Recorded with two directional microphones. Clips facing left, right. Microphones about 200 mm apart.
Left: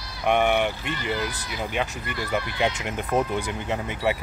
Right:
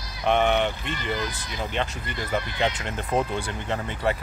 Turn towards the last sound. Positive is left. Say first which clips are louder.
# left 1 dB
turn(degrees=10)  # may be behind; listen again after turning